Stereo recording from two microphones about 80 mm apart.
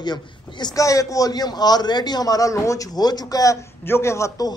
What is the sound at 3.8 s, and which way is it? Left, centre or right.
Speech, left.